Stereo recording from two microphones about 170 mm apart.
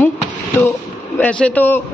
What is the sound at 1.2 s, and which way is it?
Speech, 10° left (ahead or behind).